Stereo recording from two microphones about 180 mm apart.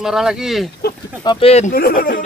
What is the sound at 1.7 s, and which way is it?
Speech, 55° left (ahead or behind).